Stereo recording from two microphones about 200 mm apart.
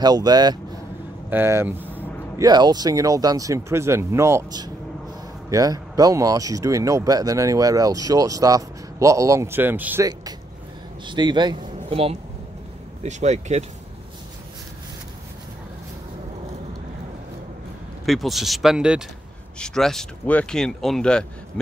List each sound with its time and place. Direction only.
0.0 s a man's voice: 20° right (ahead or behind)
18.0 s speech: centre (ahead or behind)